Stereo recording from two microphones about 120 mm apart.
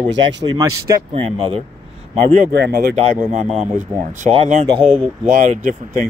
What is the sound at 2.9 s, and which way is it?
Speech, 75° right (ahead or behind).